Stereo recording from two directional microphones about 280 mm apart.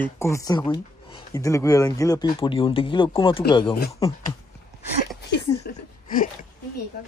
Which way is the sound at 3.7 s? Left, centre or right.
Left.